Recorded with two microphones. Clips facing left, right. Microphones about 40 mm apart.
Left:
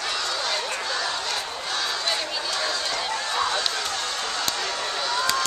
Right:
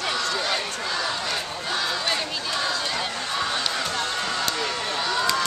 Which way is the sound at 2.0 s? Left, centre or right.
Centre.